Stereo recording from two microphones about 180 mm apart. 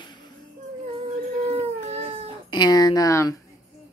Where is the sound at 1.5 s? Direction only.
35° right (ahead or behind).